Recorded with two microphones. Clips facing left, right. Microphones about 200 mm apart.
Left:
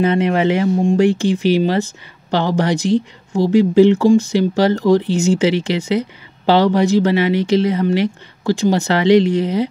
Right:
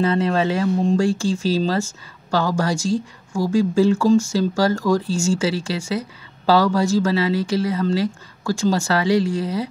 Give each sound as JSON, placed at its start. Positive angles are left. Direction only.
{"t": 0.0, "sound": "speech", "side_deg": 20}